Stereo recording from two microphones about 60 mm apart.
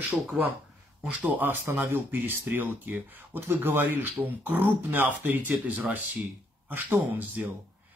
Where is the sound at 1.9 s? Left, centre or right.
Right.